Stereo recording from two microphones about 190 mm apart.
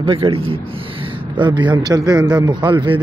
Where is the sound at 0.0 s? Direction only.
25° right (ahead or behind).